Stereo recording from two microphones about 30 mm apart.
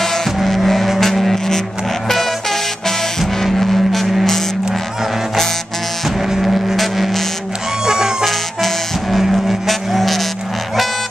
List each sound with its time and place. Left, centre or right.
0.0 s music: centre
3.5 s vehicle: centre
6.8 s vehicle: centre
7.8 s music: right
9.2 s vehicle: centre
9.7 s vehicle: centre